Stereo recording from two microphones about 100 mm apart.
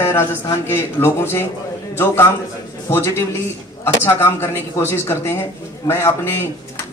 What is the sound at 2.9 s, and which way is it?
Speech, 25° left (ahead or behind).